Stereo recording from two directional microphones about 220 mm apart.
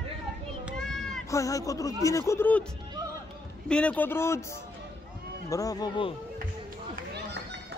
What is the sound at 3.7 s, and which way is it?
A man's voice, 5° left (ahead or behind).